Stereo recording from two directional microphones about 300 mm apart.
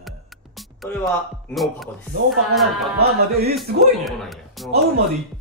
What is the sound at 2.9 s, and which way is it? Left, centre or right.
Music, right.